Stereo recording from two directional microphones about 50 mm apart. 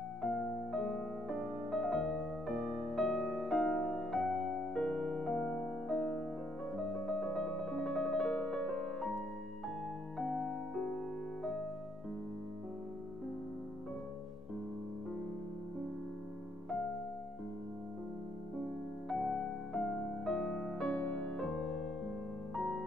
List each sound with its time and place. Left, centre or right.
0.2 s music: centre
6.9 s piano: centre
8.5 s music: centre
10.1 s music: centre
19.0 s music: centre
21.0 s music: centre
21.4 s music: centre